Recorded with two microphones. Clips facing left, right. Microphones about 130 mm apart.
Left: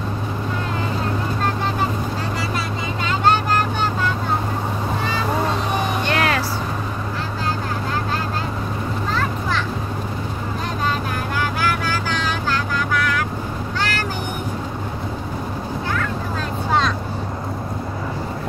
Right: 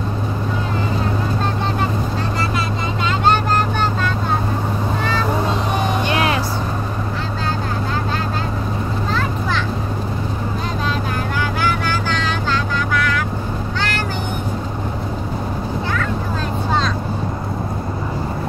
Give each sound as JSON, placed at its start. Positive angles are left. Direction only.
{"t": 6.0, "sound": "vehicle", "side_deg": -20}